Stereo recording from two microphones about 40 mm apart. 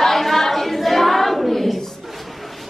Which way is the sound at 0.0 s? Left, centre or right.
Centre.